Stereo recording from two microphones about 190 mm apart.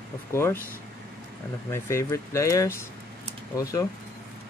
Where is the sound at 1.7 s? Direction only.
15° left (ahead or behind).